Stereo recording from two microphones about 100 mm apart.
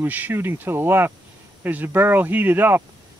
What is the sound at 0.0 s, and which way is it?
Speech, 20° right (ahead or behind).